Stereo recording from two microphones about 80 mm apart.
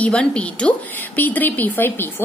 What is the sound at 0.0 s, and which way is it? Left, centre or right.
Speech, centre.